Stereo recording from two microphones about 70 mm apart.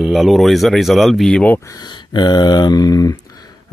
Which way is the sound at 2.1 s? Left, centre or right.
Left.